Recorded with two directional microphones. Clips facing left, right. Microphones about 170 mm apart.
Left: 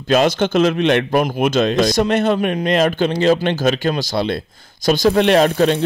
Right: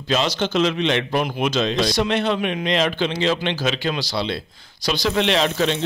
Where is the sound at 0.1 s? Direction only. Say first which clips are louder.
Left 6 dB; 50° left (ahead or behind).